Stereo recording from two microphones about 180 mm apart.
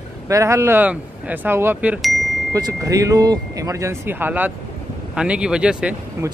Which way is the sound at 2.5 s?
20° right (ahead or behind).